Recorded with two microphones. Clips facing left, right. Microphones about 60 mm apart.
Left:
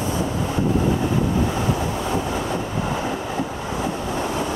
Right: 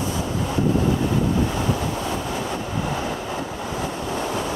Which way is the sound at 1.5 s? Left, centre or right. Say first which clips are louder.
Left 1 dB; centre.